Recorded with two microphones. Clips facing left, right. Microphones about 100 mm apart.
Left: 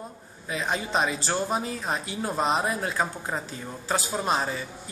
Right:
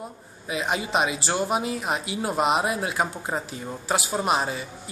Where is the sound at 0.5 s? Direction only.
10° right (ahead or behind).